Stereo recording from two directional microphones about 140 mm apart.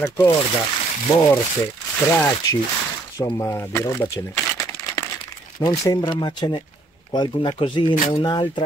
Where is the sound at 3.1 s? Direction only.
25° left (ahead or behind).